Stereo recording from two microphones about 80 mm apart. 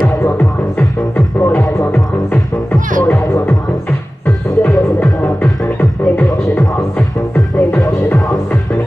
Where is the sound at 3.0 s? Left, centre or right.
Left.